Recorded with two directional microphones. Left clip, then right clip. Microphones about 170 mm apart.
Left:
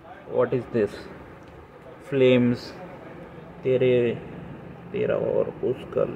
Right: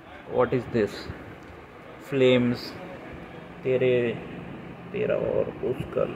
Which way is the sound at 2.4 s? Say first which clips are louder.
Left 2 dB; 30° left (ahead or behind).